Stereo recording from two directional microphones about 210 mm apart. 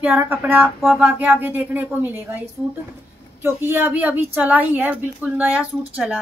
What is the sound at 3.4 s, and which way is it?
A woman's voice, 10° right (ahead or behind).